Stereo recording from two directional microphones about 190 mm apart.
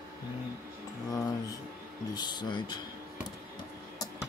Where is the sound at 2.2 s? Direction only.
25° left (ahead or behind).